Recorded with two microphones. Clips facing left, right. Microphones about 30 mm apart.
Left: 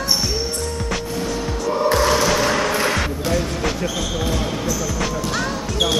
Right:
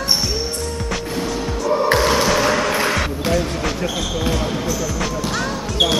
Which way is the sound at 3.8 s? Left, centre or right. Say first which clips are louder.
Right 1 dB; centre.